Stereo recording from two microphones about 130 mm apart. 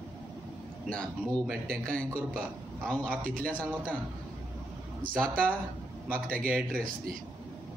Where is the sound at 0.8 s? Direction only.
5° left (ahead or behind).